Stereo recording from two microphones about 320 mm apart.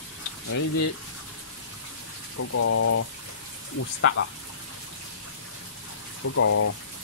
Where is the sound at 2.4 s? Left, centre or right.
Left.